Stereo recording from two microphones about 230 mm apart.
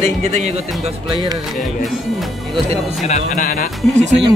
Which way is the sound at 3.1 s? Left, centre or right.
Left.